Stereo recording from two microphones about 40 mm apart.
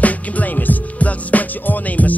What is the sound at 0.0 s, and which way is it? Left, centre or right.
Music, left.